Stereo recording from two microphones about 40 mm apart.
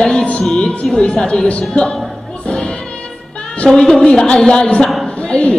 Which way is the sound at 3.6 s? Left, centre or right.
Centre.